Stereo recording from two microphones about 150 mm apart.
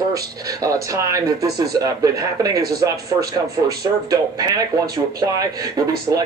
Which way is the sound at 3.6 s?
25° right (ahead or behind).